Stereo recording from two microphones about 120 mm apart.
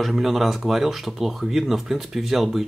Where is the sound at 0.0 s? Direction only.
Centre (ahead or behind).